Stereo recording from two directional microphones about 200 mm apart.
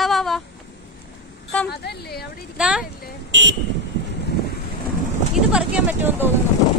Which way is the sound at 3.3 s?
65° right (ahead or behind).